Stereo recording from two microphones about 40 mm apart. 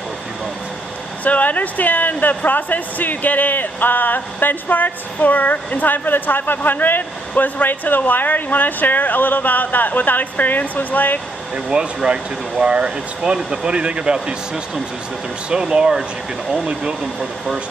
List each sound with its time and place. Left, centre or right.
1.2 s speech: left
11.5 s speech: right
15.5 s speech: right